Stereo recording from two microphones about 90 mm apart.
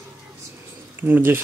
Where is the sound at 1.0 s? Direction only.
20° right (ahead or behind).